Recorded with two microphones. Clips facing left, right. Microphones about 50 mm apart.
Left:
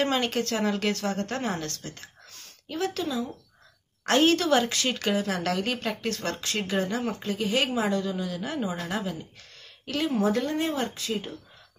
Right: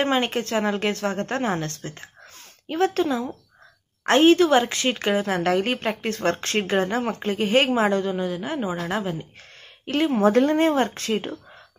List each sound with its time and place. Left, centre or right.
0.0 s a woman's voice: right
6.3 s a woman's voice: right
11.1 s speech: right